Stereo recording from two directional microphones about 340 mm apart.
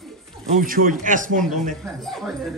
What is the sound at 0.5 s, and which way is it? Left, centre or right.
Speech, right.